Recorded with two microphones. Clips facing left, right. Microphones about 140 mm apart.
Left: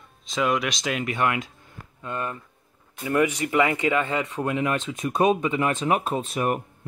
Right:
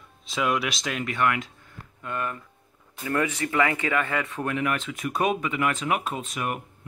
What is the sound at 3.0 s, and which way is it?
Speech, 15° left (ahead or behind).